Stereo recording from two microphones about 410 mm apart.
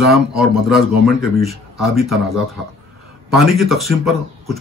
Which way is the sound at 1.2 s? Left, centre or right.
Centre.